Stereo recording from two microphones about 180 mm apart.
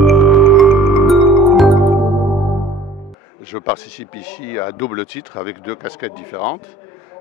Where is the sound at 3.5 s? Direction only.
10° left (ahead or behind).